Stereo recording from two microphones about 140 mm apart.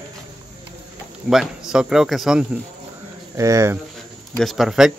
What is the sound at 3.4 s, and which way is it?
Speech, 20° right (ahead or behind).